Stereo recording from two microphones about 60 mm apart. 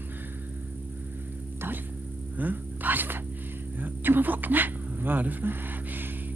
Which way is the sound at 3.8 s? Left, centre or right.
Right.